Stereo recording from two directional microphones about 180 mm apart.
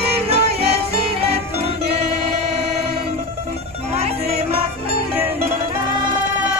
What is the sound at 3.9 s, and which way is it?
Music, 35° right (ahead or behind).